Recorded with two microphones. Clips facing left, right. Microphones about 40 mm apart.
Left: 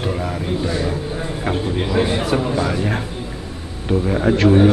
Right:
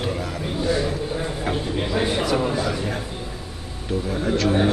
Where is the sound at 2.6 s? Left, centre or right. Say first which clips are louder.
Left 4 dB; left.